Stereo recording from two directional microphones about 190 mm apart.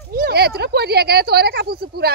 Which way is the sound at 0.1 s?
55° right (ahead or behind).